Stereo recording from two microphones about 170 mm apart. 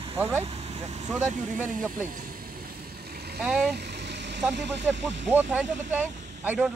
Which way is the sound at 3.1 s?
70° right (ahead or behind).